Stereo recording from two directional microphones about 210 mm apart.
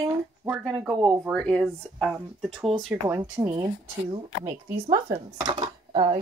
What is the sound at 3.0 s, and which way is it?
Speech, 10° right (ahead or behind).